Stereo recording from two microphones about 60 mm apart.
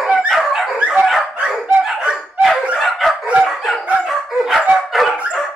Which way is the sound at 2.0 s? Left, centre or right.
Centre.